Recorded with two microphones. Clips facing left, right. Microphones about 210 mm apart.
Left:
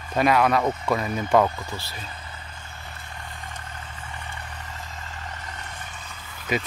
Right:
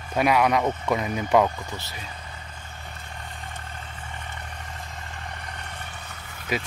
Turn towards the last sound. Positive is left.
turn(degrees=-5)  # may be behind; listen again after turning